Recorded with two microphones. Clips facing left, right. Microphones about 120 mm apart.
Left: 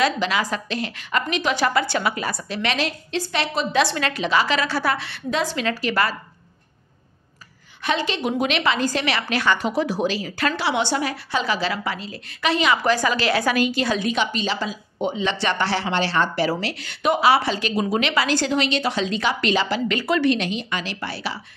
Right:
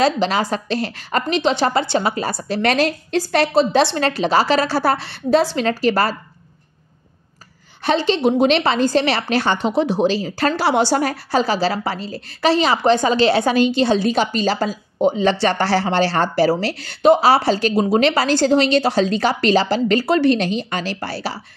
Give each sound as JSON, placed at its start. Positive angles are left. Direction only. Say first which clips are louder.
{"t": 0.0, "sound": "a woman's voice", "louder": "right 4 dB", "side_deg": -35}
{"t": 7.8, "sound": "a woman's voice", "louder": "right 7 dB", "side_deg": -30}